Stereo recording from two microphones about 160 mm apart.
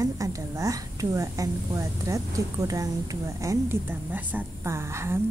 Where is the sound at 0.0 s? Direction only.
20° right (ahead or behind).